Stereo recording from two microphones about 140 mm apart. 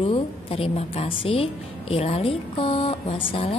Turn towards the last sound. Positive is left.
turn(degrees=40)  # may be behind; listen again after turning